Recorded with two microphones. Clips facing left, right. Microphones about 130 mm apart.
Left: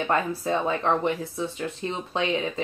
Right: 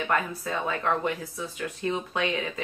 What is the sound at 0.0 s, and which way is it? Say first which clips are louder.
A woman's voice: left 3 dB; 30° left (ahead or behind).